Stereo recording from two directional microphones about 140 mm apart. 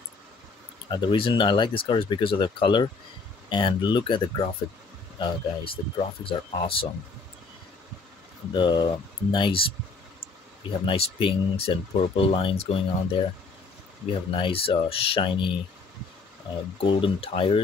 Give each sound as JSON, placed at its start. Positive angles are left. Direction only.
{"t": 0.8, "sound": "speech", "side_deg": 35}
{"t": 8.5, "sound": "speech", "side_deg": 35}
{"t": 10.9, "sound": "speech", "side_deg": 40}
{"t": 16.8, "sound": "speech", "side_deg": 35}